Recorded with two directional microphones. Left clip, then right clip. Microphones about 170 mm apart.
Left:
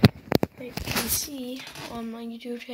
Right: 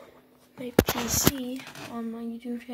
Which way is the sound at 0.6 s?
25° right (ahead or behind).